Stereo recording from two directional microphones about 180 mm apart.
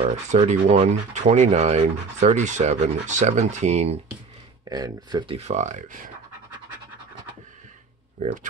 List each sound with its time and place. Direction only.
0.0 s speech: 35° right (ahead or behind)
4.6 s speech: 20° right (ahead or behind); by 5.9 s 40° right (ahead or behind)